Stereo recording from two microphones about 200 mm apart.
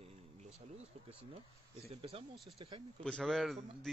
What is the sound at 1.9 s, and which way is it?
Speech, 30° right (ahead or behind).